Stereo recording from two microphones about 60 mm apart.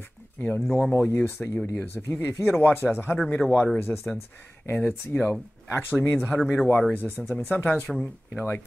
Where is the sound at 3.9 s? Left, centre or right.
Left.